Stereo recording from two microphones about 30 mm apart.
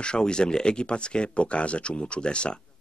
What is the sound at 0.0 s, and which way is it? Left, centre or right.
Speech, left.